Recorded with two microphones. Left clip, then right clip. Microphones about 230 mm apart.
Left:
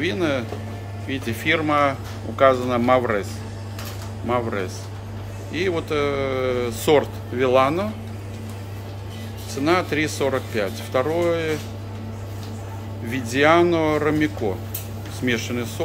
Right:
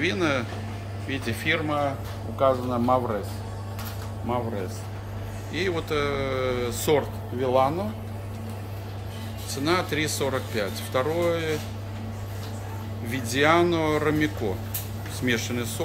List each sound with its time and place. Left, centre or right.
0.0 s speech: centre
2.3 s speech: left
5.5 s speech: centre
9.5 s speech: centre
13.1 s speech: centre